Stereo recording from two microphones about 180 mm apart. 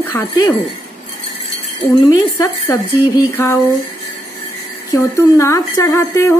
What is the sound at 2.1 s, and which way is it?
Speech, 20° left (ahead or behind).